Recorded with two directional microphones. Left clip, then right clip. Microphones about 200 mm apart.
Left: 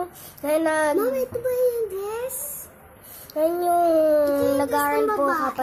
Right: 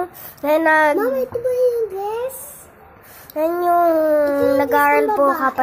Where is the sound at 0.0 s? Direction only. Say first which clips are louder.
Right 6 dB; 10° right (ahead or behind).